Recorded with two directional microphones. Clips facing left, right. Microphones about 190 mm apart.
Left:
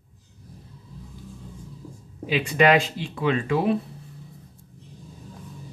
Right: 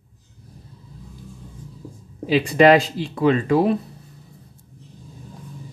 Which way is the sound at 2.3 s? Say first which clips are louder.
Right 5 dB; 35° right (ahead or behind).